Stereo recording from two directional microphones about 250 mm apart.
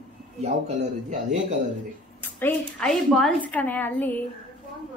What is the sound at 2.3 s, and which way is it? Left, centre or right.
A woman's voice, centre.